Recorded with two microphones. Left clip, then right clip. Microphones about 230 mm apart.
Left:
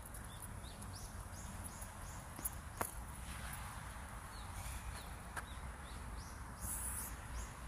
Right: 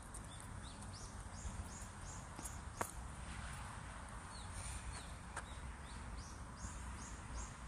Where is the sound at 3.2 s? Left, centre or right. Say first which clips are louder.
Left 2 dB; left.